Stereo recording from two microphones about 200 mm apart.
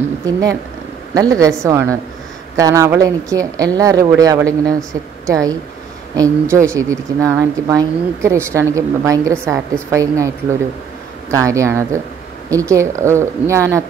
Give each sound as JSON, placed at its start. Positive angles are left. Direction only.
{"t": 1.1, "sound": "speech", "side_deg": -15}